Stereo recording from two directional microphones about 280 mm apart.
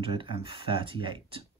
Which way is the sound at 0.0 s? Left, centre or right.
Centre.